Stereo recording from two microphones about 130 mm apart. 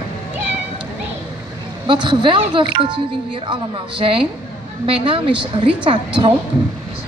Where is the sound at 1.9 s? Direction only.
35° right (ahead or behind).